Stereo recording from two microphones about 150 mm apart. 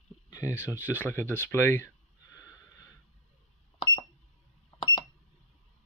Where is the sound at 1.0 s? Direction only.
15° left (ahead or behind).